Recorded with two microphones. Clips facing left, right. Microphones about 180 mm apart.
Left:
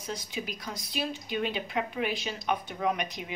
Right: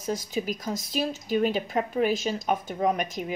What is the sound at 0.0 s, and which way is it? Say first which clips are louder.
A woman's voice: right 7 dB; 45° right (ahead or behind).